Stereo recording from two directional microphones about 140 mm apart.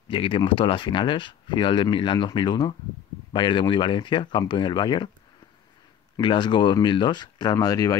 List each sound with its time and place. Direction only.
0.1 s speech: 40° left (ahead or behind)
6.1 s speech: 30° left (ahead or behind)